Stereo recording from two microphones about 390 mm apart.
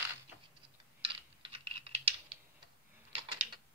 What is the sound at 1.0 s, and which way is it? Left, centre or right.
Typing, centre.